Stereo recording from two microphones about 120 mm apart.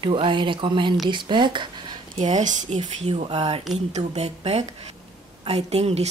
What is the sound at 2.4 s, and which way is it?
Speech, 80° right.